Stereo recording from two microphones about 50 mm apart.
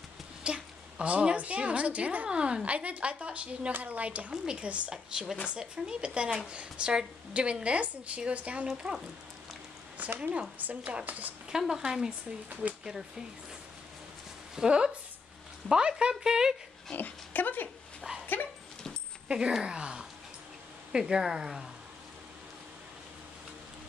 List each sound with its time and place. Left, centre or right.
0.4 s a woman's voice: right
4.3 s a woman's voice: centre
8.8 s speech: centre
10.1 s a woman's voice: right
11.5 s speech: centre
12.6 s a woman's voice: right
14.5 s a woman's voice: centre
16.9 s speech: left
18.2 s dog: left
19.2 s speech: right